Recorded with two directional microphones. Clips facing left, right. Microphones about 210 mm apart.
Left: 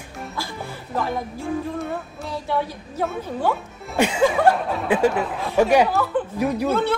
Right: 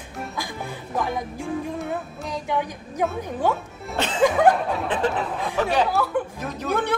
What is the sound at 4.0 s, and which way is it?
Chuckle, 10° left (ahead or behind).